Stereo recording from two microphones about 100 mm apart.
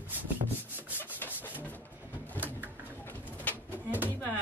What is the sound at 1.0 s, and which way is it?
Rub, 20° left (ahead or behind).